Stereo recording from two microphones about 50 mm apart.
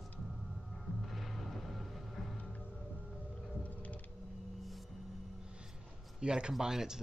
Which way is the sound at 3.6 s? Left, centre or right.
Left.